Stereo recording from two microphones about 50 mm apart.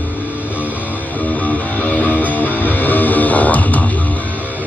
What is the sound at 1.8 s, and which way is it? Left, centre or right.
Music, left.